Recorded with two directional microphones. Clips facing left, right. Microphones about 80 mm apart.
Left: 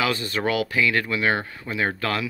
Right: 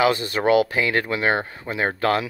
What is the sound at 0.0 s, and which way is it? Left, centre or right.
Speech, right.